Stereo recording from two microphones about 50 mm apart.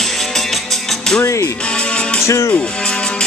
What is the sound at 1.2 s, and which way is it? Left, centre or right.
Speech, left.